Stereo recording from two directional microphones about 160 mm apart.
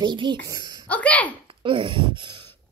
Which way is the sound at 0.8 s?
10° left (ahead or behind).